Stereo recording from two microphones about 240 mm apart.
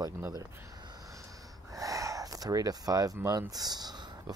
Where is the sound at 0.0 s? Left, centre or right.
Centre.